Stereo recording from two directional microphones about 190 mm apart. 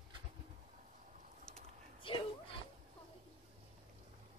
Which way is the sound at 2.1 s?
25° left (ahead or behind).